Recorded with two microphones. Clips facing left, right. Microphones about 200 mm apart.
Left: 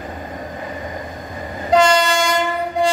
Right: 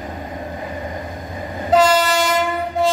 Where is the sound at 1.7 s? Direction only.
5° right (ahead or behind).